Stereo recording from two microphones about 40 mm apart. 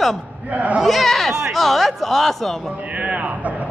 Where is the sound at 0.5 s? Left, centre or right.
Right.